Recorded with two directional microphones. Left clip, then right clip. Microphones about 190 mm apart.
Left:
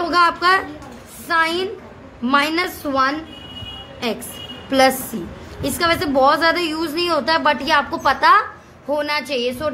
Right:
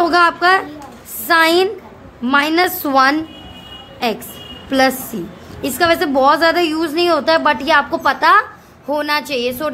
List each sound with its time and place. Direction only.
0.0 s a child's voice: 25° right (ahead or behind)
1.2 s a woman's voice: 30° right (ahead or behind)
2.2 s a woman's voice: 15° right (ahead or behind)
2.8 s a woman's voice: 35° right (ahead or behind)
4.6 s a woman's voice: 15° right (ahead or behind)